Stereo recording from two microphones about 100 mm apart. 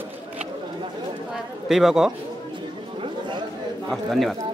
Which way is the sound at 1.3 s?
5° right (ahead or behind).